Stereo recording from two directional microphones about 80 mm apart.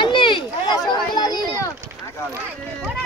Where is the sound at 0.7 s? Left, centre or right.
Left.